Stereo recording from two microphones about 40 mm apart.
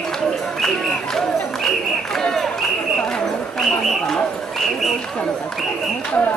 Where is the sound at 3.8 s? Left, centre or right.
Centre.